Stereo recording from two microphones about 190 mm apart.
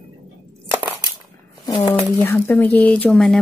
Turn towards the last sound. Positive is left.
turn(degrees=0)  # may be behind; listen again after turning